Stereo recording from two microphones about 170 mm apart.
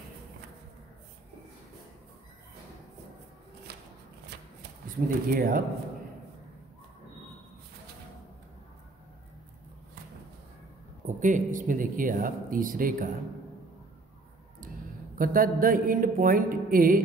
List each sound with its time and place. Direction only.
3.7 s shuffling cards: 75° right (ahead or behind)
5.0 s a woman's voice: 55° right (ahead or behind)
11.1 s speech: 50° right (ahead or behind)
15.1 s a woman's voice: 55° right (ahead or behind)